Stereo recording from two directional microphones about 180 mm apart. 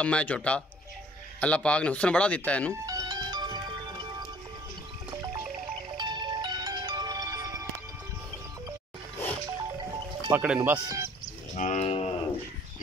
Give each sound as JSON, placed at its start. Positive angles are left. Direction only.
{"t": 0.0, "sound": "speech", "side_deg": 5}
{"t": 2.7, "sound": "music", "side_deg": -20}
{"t": 5.9, "sound": "music", "side_deg": -25}
{"t": 10.3, "sound": "speech", "side_deg": -10}
{"t": 10.8, "sound": "speech", "side_deg": -20}
{"t": 11.5, "sound": "cattle", "side_deg": 40}